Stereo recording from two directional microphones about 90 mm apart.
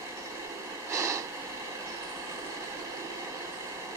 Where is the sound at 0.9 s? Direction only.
35° right (ahead or behind).